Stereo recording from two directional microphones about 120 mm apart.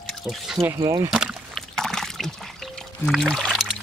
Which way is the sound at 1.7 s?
5° left (ahead or behind).